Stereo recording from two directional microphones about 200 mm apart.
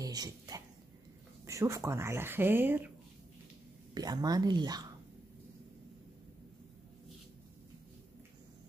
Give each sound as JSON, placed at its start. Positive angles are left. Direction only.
{"t": 0.0, "sound": "a sound", "side_deg": -20}
{"t": 1.4, "sound": "speech", "side_deg": -15}
{"t": 3.9, "sound": "speech", "side_deg": -20}